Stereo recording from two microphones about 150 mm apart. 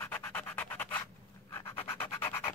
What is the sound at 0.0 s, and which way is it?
Music, 15° left (ahead or behind).